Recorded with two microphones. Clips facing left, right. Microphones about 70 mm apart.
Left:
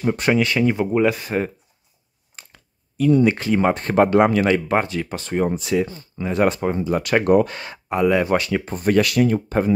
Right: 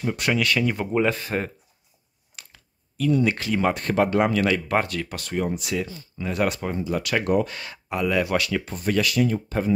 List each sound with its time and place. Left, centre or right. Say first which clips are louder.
0.0 s speech: left 5 dB; left
0.9 s speech: left 4 dB; centre
2.5 s speech: left 9 dB; left
4.2 s speech: left 5 dB; left
4.6 s speech: left 3 dB; centre
5.9 s speech: left 4 dB; left
6.2 s speech: left 6 dB; left
6.8 s speech: left 4 dB; left
8.7 s speech: left 6 dB; left